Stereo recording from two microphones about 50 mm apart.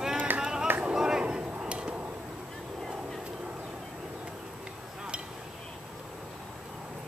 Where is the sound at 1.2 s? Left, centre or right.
Right.